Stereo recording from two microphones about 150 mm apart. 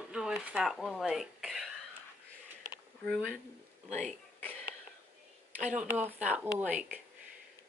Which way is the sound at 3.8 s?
50° right (ahead or behind).